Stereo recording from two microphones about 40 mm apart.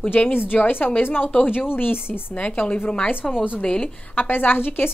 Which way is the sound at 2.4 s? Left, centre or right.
Left.